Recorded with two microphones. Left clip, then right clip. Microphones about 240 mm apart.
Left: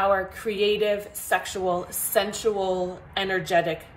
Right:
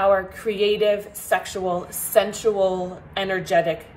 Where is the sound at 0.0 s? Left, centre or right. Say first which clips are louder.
Right 4 dB; centre.